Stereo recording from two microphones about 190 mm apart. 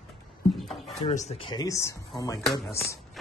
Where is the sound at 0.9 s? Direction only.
35° left (ahead or behind); by 3.0 s 15° left (ahead or behind).